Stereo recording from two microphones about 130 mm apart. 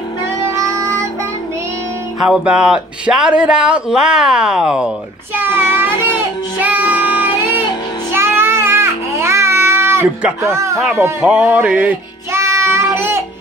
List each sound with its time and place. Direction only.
0.4 s child singing: 25° right (ahead or behind)
2.2 s speech: 5° right (ahead or behind)
8.1 s child singing: 20° right (ahead or behind)
10.4 s speech: 20° right (ahead or behind)
11.4 s music: 10° right (ahead or behind)
12.4 s child singing: 20° right (ahead or behind)